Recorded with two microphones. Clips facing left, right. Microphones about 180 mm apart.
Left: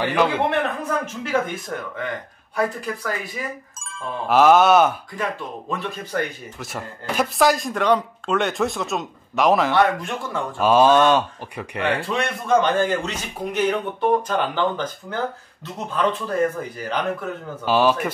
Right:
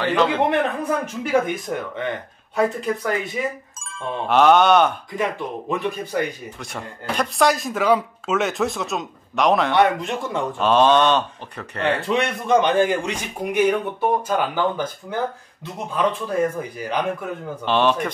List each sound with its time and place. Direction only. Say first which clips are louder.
0.0 s speech: right 1 dB; 10° left (ahead or behind)
0.8 s a man's voice: right 2 dB; 10° right (ahead or behind)
2.5 s speech: right 3 dB; 25° right (ahead or behind)
3.7 s speech: right 2 dB; centre (ahead or behind)
5.1 s a man's voice: right 3 dB; 20° right (ahead or behind)
6.6 s speech: left 2 dB; 5° left (ahead or behind)
9.8 s speech: right 1 dB; 20° right (ahead or behind)
10.6 s speech: left 1 dB; 5° left (ahead or behind)
12.1 s a man's voice: right 2 dB; 15° right (ahead or behind)
17.6 s speech: left 1 dB; 5° left (ahead or behind)